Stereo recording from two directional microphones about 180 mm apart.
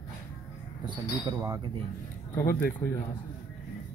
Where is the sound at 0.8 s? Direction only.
25° right (ahead or behind).